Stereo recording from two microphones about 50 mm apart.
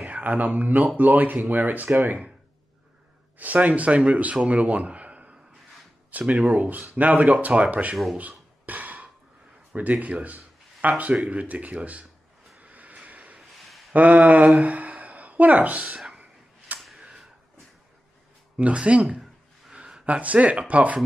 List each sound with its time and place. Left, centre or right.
0.0 s speech: right
3.3 s speech: right
7.9 s speech: centre
8.2 s beatboxing: right
9.7 s speech: right
10.2 s a sound: right
11.2 s speech: right
12.5 s a sound: right
13.9 s a woman's voice: right
16.2 s a sound: right
17.0 s a sound: centre
18.6 s speech: right